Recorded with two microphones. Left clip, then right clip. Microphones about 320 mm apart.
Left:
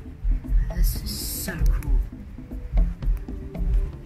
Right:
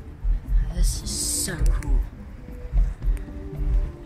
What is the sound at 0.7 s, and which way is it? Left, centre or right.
Music, centre.